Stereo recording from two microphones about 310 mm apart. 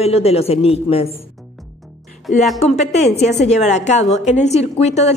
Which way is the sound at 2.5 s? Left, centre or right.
Left.